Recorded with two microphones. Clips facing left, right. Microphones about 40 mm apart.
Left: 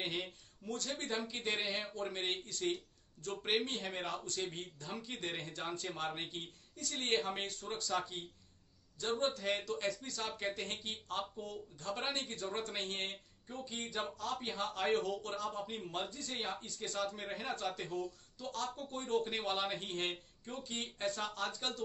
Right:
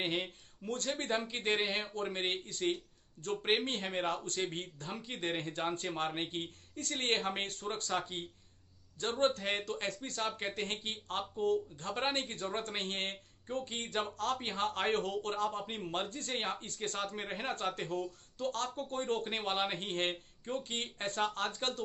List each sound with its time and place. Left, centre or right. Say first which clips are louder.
0.0 s speech: right 4 dB; right
0.7 s speech: right 4 dB; right
2.0 s speech: right 3 dB; right
5.0 s speech: right 7 dB; right
19.3 s speech: right 2 dB; right